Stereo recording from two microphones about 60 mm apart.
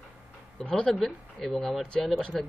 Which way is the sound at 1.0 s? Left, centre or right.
Centre.